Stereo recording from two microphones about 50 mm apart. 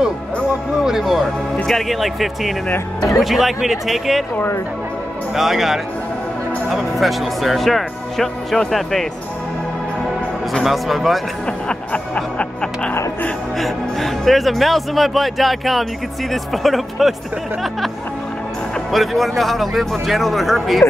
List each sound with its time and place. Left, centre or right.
0.8 s speech: centre
5.3 s speech: centre
10.6 s speech: centre
11.9 s music: left
13.6 s speech: centre
18.9 s speech: centre